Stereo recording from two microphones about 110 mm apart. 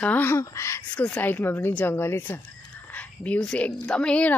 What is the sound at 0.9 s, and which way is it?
Speech, 15° left (ahead or behind).